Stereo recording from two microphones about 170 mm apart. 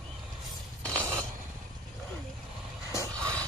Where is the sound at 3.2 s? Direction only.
5° left (ahead or behind).